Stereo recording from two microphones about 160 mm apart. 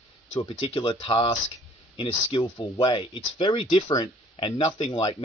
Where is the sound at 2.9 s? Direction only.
30° left (ahead or behind).